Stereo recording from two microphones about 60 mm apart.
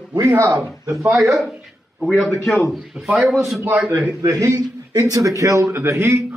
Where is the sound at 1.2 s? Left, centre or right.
Centre.